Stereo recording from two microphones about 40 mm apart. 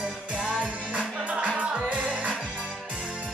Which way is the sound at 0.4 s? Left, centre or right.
Left.